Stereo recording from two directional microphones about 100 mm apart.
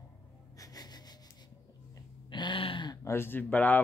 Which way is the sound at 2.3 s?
55° left (ahead or behind).